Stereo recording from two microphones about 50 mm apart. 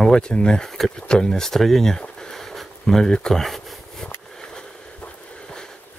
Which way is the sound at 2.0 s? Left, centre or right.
Centre.